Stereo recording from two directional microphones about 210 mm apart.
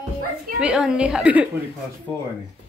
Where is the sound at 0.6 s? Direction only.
5° right (ahead or behind).